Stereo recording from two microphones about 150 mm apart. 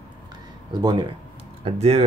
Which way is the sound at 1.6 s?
45° right (ahead or behind).